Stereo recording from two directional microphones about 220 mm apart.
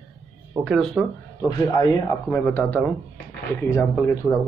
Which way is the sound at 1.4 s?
15° left (ahead or behind).